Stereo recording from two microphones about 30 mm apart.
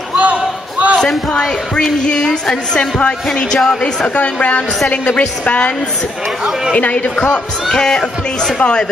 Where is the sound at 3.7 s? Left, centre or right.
Left.